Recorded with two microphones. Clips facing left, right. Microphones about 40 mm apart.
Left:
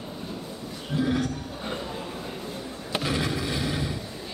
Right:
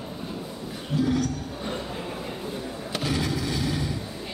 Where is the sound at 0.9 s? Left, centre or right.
Left.